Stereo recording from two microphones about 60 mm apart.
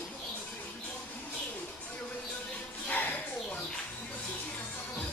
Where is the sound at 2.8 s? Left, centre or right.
Left.